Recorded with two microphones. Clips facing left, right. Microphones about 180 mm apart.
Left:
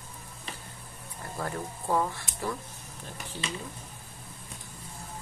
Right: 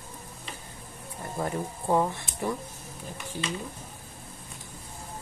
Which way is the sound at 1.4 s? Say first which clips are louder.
Right 4 dB; 20° right (ahead or behind).